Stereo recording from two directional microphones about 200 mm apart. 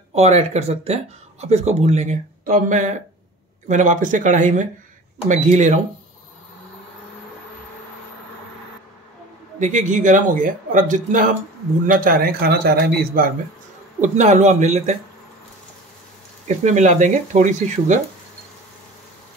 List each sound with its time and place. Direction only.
0.1 s speech: 30° right (ahead or behind)
9.6 s a man's voice: 40° right (ahead or behind)
16.4 s speech: 35° right (ahead or behind)